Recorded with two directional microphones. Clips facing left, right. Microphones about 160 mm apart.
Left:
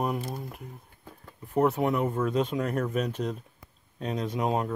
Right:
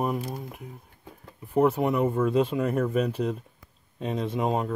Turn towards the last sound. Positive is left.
turn(degrees=0)  # may be behind; listen again after turning